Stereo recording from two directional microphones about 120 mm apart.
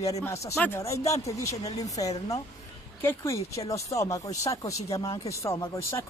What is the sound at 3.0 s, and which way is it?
Speech, 20° left (ahead or behind).